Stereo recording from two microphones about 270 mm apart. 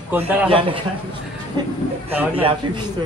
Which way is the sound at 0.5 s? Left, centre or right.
Centre.